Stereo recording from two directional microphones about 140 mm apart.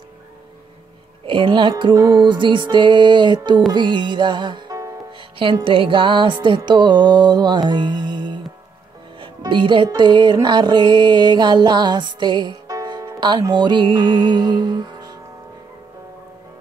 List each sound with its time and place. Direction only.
1.2 s music: 35° right (ahead or behind)
5.4 s music: 40° right (ahead or behind)